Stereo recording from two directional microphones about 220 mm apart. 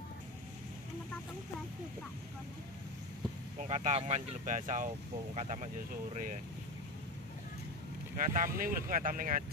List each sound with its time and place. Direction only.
3.5 s speech: 30° right (ahead or behind)
8.2 s speech: 35° right (ahead or behind)